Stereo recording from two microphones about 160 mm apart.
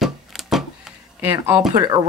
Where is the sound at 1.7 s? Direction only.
25° right (ahead or behind).